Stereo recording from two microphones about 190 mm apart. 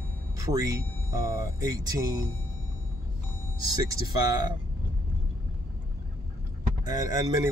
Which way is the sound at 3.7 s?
20° right (ahead or behind).